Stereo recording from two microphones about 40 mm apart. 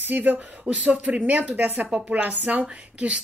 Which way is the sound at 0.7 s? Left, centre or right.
Right.